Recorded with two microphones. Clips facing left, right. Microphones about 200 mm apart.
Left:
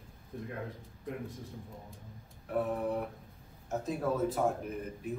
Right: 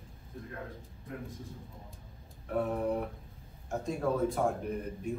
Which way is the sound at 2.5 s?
Centre (ahead or behind).